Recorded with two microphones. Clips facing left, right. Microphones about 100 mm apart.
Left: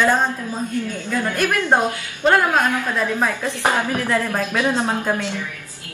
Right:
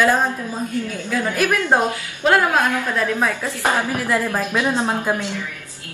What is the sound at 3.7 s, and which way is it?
A man's voice, 15° right (ahead or behind).